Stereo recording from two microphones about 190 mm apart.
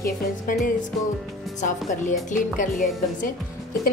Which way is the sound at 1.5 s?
40° left (ahead or behind).